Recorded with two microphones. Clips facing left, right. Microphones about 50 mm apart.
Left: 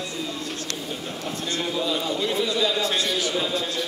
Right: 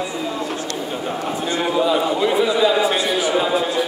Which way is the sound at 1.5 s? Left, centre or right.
Right.